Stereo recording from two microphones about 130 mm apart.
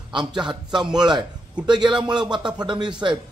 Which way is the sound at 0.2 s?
35° right (ahead or behind).